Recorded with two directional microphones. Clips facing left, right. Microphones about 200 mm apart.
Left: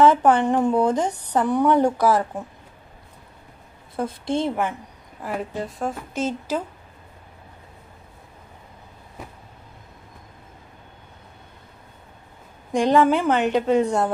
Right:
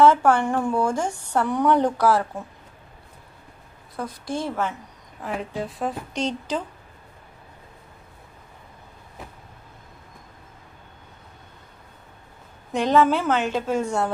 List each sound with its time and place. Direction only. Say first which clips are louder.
0.0 s a woman's voice: left 1 dB; 20° left (ahead or behind)
3.9 s a woman's voice: left 5 dB; 25° left (ahead or behind)
5.2 s a woman's voice: left 1 dB; 5° left (ahead or behind)
12.7 s a woman's voice: left 2 dB; 15° left (ahead or behind)